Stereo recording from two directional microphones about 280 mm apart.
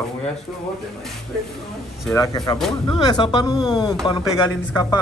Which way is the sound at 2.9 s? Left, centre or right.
Centre.